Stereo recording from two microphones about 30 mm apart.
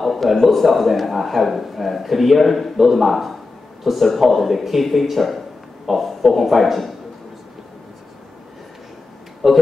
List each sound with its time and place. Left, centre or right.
0.0 s a man's voice: centre
9.4 s speech: centre